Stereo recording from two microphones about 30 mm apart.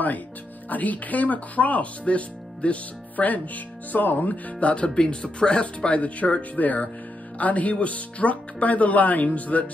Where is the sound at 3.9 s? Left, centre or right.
Left.